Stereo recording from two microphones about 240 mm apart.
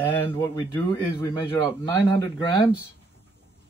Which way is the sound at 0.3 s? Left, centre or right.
Centre.